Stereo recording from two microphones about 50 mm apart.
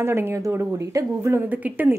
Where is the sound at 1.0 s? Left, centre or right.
Right.